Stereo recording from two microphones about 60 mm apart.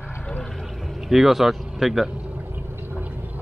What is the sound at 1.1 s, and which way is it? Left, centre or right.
Speech, centre.